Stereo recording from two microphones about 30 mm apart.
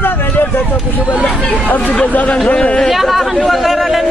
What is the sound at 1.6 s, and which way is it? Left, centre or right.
Speech, left.